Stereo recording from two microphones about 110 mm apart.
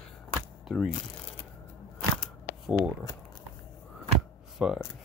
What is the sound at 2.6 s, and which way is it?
Speech, 10° right (ahead or behind).